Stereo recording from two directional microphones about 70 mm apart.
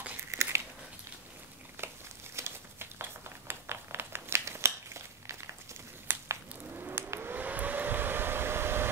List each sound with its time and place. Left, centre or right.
0.2 s biting: right
1.8 s crumpling: right
2.3 s a sound: right
6.8 s hair dryer: right